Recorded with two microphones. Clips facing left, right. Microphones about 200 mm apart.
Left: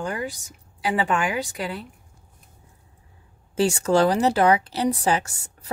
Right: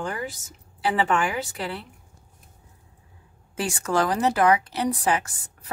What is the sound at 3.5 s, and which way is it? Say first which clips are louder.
Speech: left 5 dB; 30° left (ahead or behind).